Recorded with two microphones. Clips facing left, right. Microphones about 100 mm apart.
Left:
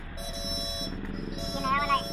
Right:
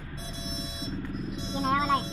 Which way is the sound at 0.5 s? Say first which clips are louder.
Right 1 dB; 90° left.